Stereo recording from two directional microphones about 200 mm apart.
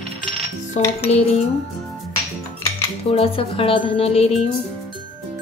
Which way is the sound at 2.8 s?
30° left (ahead or behind).